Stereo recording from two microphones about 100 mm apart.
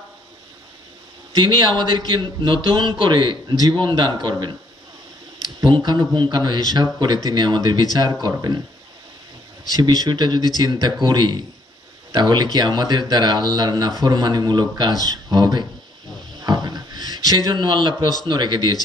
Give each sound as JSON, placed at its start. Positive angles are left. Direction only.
{"t": 1.3, "sound": "speech", "side_deg": -50}
{"t": 9.7, "sound": "a man's voice", "side_deg": -45}